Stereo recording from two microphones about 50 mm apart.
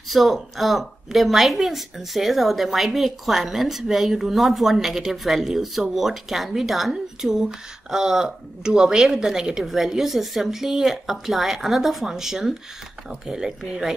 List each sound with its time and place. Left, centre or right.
0.1 s speech: centre